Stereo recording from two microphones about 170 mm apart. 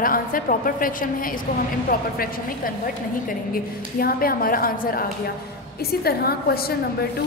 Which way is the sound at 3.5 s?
60° left (ahead or behind).